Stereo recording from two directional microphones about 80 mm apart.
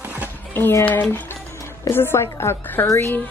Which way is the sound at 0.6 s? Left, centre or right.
Left.